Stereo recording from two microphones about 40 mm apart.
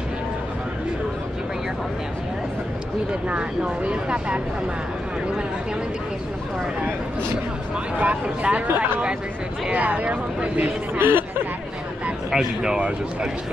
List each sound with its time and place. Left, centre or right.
3.1 s speech: right
8.0 s speech: right
8.6 s speech: right
9.7 s speech: right
11.0 s chatter: right
12.3 s speech: centre